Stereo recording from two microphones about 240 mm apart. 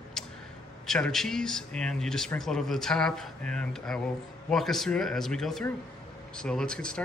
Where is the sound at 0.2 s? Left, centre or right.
Centre.